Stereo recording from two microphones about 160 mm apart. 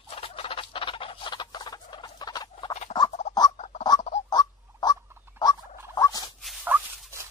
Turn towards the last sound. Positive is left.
turn(degrees=-10)  # may be behind; listen again after turning